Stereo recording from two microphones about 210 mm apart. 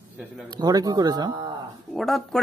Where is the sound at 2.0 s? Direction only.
Centre (ahead or behind).